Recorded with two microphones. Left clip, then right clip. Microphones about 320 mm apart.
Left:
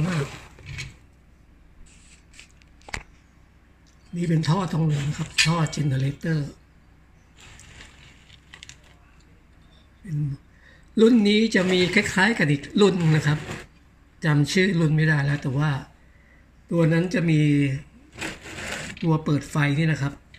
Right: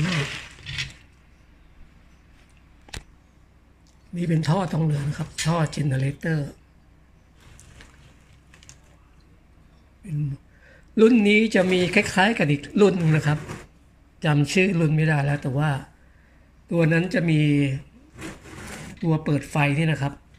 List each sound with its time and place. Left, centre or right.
4.1 s speech: centre
11.0 s speech: centre
18.9 s speech: centre